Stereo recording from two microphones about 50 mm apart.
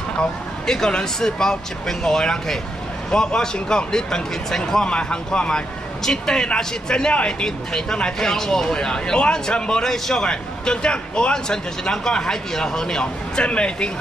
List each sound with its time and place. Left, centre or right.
0.7 s a man's voice: centre